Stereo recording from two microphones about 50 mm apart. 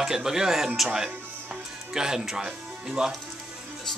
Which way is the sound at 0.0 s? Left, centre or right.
Centre.